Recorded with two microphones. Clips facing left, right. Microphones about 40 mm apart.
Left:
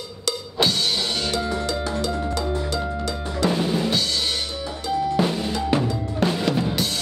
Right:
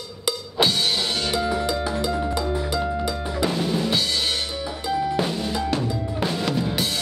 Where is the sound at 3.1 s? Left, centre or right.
Centre.